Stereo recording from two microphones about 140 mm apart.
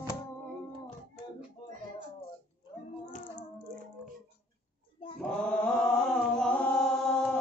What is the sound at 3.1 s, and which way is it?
Child singing, 65° left (ahead or behind).